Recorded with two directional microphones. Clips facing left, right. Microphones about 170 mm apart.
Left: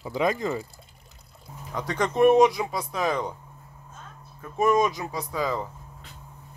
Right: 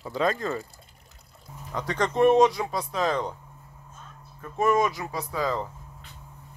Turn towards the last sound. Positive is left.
turn(degrees=15)  # may be behind; listen again after turning